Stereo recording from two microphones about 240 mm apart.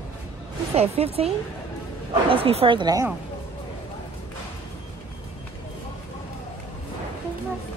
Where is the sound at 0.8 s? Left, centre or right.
Right.